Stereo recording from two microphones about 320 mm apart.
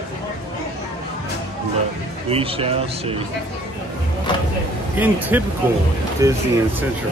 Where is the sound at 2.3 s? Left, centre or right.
Centre.